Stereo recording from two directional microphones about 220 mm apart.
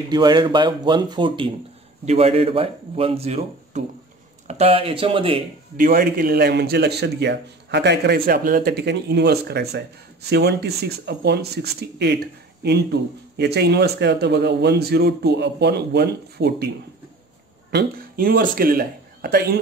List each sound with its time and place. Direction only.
0.1 s speech: 20° right (ahead or behind)
5.8 s a man's voice: 40° right (ahead or behind)